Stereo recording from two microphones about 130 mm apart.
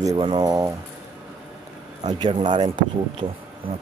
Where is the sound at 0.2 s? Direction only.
35° right (ahead or behind).